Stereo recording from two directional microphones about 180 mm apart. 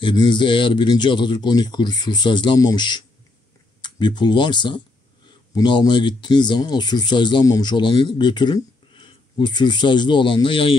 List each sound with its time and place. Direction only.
0.0 s speech: 25° left (ahead or behind)